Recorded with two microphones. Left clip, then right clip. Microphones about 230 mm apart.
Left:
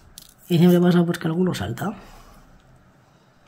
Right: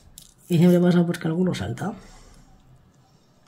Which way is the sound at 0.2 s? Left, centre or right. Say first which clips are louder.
Left 2 dB; centre.